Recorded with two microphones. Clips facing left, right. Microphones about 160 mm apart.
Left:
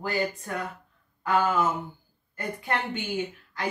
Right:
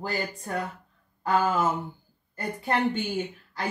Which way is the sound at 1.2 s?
35° right (ahead or behind).